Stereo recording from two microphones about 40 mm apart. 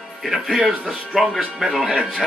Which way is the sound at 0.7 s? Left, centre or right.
Centre.